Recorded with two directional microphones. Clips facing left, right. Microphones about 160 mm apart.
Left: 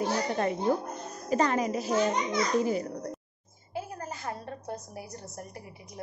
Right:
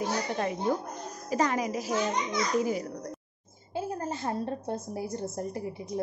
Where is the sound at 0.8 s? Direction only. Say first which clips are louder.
Left 2 dB; 10° right (ahead or behind).